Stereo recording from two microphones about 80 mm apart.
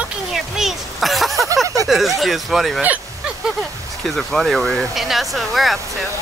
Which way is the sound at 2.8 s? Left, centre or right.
Centre.